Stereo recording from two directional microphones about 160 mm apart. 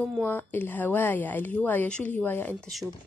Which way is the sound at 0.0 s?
5° left (ahead or behind).